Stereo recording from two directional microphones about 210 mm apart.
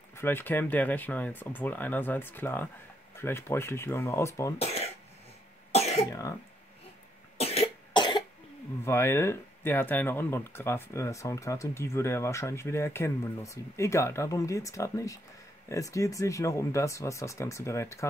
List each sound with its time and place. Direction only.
0.2 s speech: 10° left (ahead or behind)
4.6 s cough: 30° left (ahead or behind)
7.3 s cough: 30° left (ahead or behind)
8.8 s speech: 10° left (ahead or behind)